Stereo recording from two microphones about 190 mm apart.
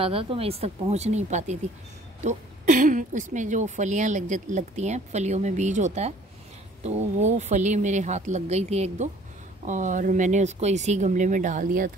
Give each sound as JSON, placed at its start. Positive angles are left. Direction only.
{"t": 0.0, "sound": "speech", "side_deg": -30}